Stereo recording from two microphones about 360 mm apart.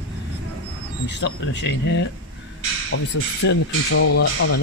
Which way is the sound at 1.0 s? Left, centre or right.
Left.